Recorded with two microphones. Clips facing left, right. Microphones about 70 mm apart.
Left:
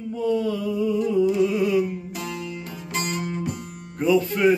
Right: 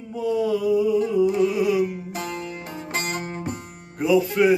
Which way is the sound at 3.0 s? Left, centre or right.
Right.